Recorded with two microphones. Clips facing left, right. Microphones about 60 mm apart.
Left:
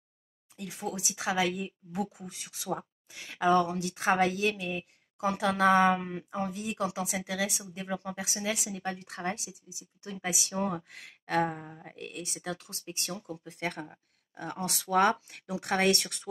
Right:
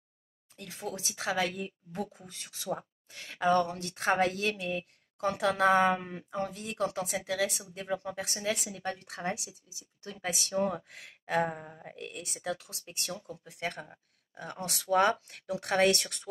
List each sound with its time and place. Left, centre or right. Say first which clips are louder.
0.6 s speech: left 2 dB; centre
9.5 s a woman's voice: left 3 dB; centre
10.1 s speech: right 1 dB; centre